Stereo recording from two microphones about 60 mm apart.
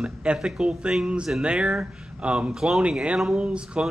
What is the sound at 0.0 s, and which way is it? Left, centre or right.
Speech, centre.